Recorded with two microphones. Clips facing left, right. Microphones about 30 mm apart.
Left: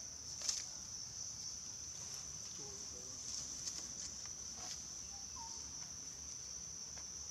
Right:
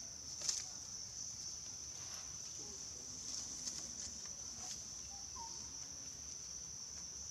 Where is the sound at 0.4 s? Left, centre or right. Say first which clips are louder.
Even; centre.